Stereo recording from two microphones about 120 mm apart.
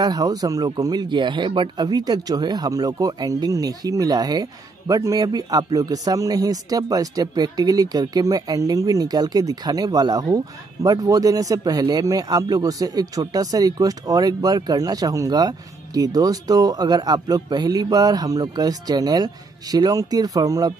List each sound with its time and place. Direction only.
0.0 s speech: 30° right (ahead or behind)